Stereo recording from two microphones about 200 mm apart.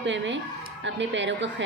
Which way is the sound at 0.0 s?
65° right (ahead or behind).